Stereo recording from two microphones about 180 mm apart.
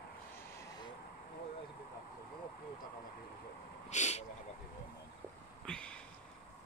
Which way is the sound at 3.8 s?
40° left (ahead or behind).